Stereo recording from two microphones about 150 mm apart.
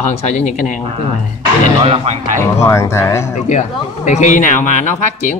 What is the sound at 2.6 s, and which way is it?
Speech, 20° left (ahead or behind).